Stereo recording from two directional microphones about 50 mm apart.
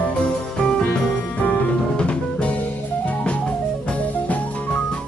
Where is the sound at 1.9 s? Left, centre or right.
Centre.